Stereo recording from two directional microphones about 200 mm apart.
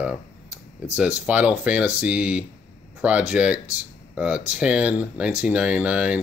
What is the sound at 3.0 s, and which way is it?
Speech, 5° right (ahead or behind).